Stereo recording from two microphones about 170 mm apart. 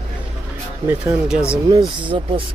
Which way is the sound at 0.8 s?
10° right (ahead or behind).